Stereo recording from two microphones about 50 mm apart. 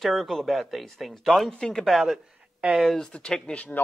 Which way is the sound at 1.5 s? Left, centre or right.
Centre.